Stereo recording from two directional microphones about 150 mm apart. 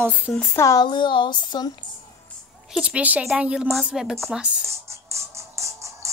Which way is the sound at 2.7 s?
10° right (ahead or behind).